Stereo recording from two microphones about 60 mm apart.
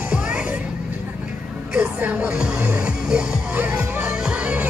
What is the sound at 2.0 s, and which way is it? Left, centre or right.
Music, right.